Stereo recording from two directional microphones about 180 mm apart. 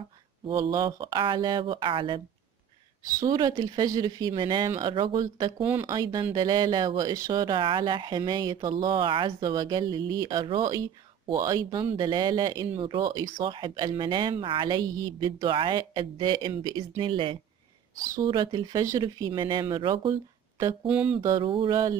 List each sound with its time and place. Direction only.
0.5 s speech: 20° right (ahead or behind)
20.8 s mantra: 5° right (ahead or behind)
21.2 s speech: 25° right (ahead or behind)